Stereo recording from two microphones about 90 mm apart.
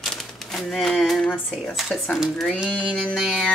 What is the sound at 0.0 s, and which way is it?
Typewriter, centre (ahead or behind).